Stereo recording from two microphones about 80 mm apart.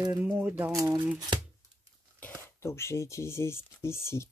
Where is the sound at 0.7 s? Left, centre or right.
Right.